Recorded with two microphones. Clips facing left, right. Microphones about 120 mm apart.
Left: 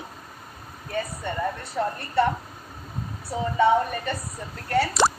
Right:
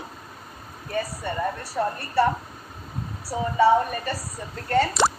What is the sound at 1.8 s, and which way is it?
Speech, 10° right (ahead or behind).